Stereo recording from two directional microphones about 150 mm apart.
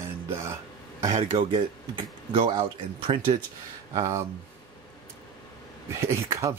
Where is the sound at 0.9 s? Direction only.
55° right (ahead or behind).